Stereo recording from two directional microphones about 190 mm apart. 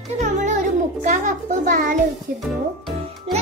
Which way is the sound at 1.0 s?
40° right (ahead or behind).